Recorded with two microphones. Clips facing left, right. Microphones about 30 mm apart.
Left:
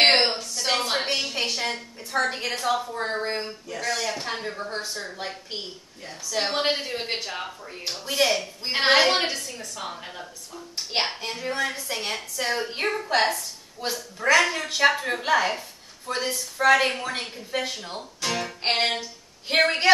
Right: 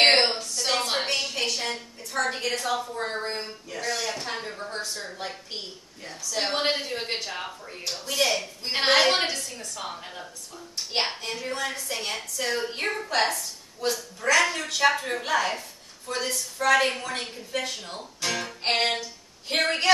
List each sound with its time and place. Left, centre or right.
0.0 s a sound: centre
1.6 s a woman's voice: centre
6.0 s a woman's voice: centre